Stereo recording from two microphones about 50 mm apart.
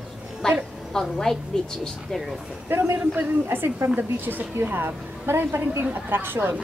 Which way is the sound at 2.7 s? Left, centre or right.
Right.